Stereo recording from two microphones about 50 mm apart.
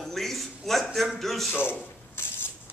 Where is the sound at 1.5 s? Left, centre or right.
Left.